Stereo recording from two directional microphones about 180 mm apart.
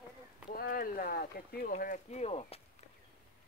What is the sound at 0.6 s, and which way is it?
Speech, 55° left (ahead or behind).